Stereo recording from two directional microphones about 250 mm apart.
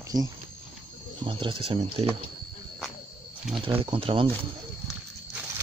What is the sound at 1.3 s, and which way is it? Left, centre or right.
Speech, right.